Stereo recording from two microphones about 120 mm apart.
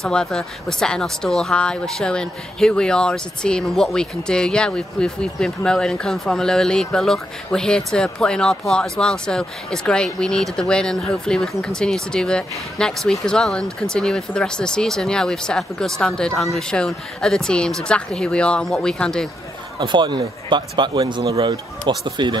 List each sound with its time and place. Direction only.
0.0 s speech: 5° left (ahead or behind)
19.8 s speech: 40° right (ahead or behind)
21.0 s speech: 30° right (ahead or behind)
21.5 s speech: 40° right (ahead or behind)